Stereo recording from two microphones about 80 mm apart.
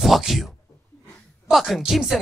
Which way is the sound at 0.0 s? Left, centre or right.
Centre.